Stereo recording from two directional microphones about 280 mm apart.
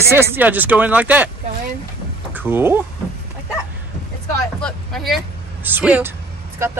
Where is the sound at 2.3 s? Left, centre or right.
Centre.